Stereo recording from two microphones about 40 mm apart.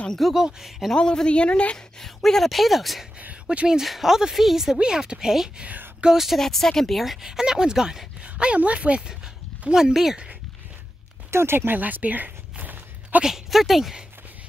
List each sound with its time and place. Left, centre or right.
0.3 s a woman's voice: centre
0.7 s speech: centre
0.9 s a woman's voice: left
2.0 s speech: centre
3.5 s speech: right
3.8 s a woman's voice: centre
4.7 s a woman's voice: centre
6.3 s speech: centre
7.2 s a woman's voice: centre
8.2 s speech: right
11.3 s speech: right
11.8 s a sound: right
13.2 s speech: centre